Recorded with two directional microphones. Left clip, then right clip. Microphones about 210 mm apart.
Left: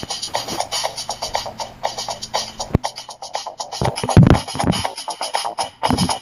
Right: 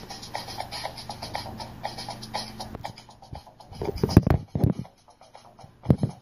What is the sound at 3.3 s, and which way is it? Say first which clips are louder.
Music: left 15 dB; 45° left (ahead or behind).